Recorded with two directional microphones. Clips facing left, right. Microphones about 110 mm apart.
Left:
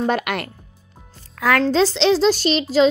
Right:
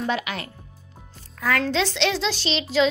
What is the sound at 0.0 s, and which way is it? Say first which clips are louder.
Speech: left 6 dB; 55° left (ahead or behind).